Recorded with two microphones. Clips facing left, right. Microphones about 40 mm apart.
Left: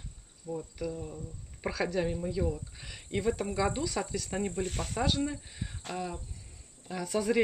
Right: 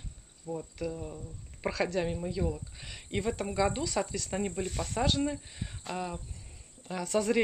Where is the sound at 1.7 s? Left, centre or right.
Left.